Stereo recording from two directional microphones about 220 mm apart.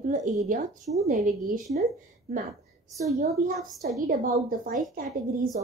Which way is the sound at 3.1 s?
35° right (ahead or behind).